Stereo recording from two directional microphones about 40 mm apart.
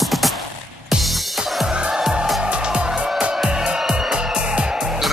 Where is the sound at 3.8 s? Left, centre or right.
Centre.